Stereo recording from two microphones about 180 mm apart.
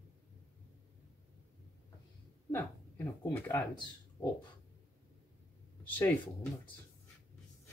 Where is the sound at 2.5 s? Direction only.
10° left (ahead or behind).